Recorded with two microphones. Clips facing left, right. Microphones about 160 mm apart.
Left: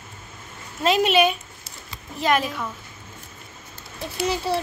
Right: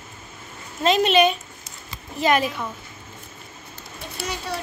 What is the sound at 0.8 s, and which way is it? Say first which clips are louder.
A woman's voice: right 1 dB; 10° left (ahead or behind).